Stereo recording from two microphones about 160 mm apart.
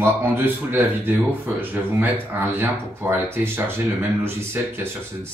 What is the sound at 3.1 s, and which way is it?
Speech, 15° right (ahead or behind).